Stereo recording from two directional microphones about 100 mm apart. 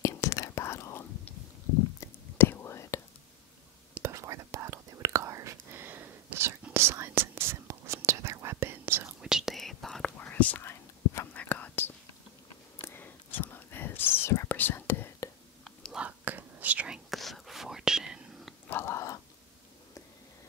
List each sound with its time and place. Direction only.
0.0 s whispering: 30° left (ahead or behind)
4.0 s whispering: 30° right (ahead or behind)
9.2 s whispering: 5° right (ahead or behind)
10.1 s whispering: 15° left (ahead or behind)
15.9 s whispering: 15° right (ahead or behind)
17.1 s whispering: centre (ahead or behind)
18.7 s chewing: 25° left (ahead or behind)